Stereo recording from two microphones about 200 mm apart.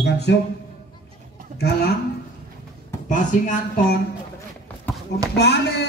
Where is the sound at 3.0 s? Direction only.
40° left (ahead or behind).